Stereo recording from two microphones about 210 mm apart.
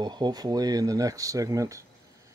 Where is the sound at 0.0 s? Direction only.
20° right (ahead or behind).